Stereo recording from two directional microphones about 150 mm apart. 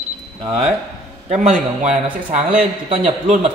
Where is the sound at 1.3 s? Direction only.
55° right (ahead or behind).